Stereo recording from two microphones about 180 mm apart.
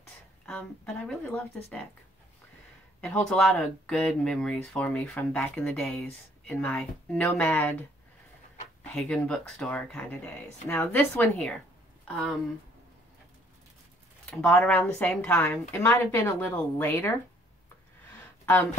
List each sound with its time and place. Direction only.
0.5 s speech: 5° left (ahead or behind)
3.0 s speech: 5° left (ahead or behind)
8.9 s speech: 5° left (ahead or behind)
14.3 s speech: 5° left (ahead or behind)
18.4 s a sound: 10° left (ahead or behind)